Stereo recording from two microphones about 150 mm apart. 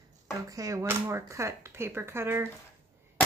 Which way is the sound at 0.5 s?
20° right (ahead or behind).